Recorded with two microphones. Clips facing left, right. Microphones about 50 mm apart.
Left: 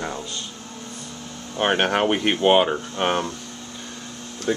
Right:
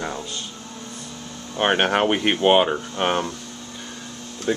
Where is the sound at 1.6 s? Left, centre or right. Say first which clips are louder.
Right 1 dB; centre.